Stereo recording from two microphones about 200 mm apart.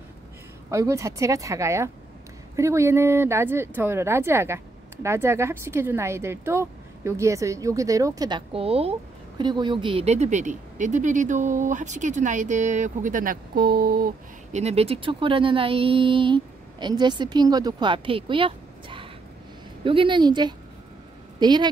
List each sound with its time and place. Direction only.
0.7 s a woman's voice: 15° right (ahead or behind); by 14.6 s 45° right (ahead or behind)
14.6 s speech: 30° right (ahead or behind)